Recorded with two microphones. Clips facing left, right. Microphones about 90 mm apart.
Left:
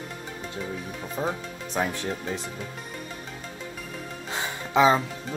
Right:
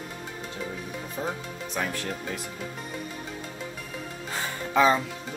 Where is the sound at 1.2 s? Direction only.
20° left (ahead or behind).